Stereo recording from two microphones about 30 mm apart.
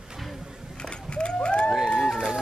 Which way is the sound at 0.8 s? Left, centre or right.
Left.